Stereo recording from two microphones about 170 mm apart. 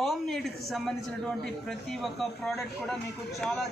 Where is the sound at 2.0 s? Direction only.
Centre (ahead or behind).